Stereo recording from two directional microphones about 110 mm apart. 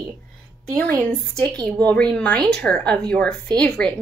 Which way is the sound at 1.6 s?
10° left (ahead or behind).